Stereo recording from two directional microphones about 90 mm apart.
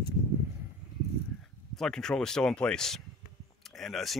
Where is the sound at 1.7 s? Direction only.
5° left (ahead or behind).